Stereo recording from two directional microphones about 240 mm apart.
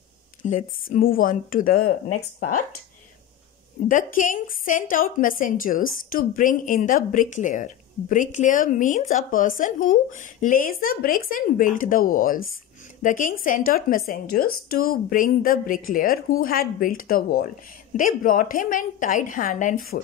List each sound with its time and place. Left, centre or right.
0.4 s speech: left
3.9 s speech: left